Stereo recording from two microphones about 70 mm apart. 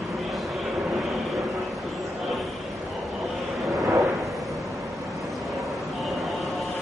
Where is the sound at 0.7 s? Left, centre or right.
Centre.